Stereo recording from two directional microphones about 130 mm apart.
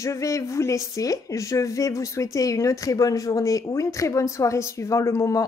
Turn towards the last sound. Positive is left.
turn(degrees=25)  # may be behind; listen again after turning